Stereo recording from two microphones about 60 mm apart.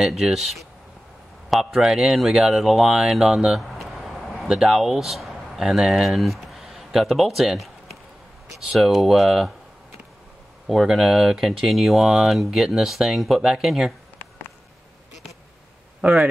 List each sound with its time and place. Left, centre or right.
0.0 s speech: centre
10.7 s speech: centre
16.0 s speech: right